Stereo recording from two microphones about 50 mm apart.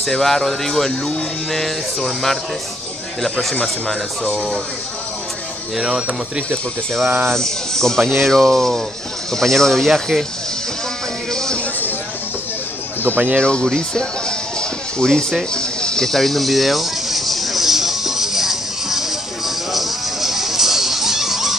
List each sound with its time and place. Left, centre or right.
0.0 s speech: centre
3.2 s speech: centre
5.8 s speech: centre
7.3 s speech: centre
11.3 s a sound: centre
13.0 s speech: right
13.4 s speech: centre
14.6 s music: centre
15.5 s a sound: centre